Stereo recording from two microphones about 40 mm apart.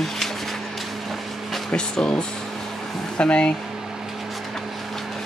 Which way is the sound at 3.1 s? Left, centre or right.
Left.